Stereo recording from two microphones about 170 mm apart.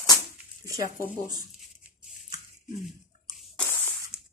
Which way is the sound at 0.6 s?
20° right (ahead or behind).